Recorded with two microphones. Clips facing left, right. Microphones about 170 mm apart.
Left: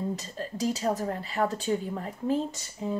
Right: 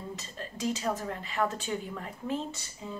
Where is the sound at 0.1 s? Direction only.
40° left (ahead or behind).